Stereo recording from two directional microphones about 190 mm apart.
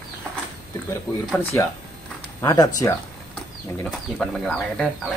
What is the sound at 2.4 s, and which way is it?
Speech, 20° left (ahead or behind).